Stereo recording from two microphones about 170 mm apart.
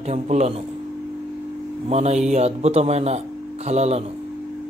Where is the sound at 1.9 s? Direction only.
40° right (ahead or behind).